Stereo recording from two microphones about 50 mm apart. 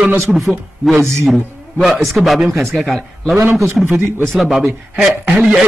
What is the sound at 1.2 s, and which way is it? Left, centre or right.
A man's voice, centre.